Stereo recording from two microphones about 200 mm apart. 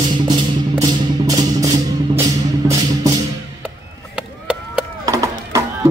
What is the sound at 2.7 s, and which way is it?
Music, 15° right (ahead or behind).